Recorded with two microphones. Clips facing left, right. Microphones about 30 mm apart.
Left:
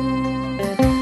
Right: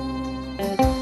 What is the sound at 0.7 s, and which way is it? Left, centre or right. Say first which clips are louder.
Music: left 3 dB; left.